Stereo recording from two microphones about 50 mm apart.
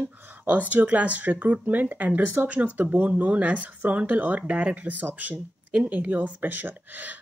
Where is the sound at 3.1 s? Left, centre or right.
Right.